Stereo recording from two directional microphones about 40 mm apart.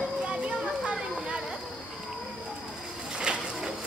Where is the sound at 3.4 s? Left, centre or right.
Centre.